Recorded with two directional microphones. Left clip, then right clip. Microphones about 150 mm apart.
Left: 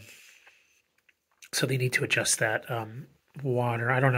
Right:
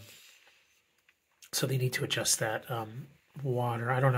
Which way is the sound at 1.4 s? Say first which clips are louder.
Left 4 dB; 20° left (ahead or behind).